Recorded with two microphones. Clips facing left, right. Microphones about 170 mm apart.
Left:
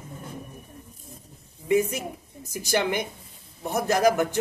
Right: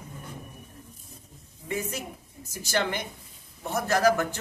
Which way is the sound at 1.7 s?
15° left (ahead or behind).